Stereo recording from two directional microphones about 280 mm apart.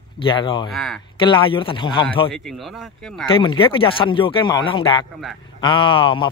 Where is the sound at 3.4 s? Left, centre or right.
Centre.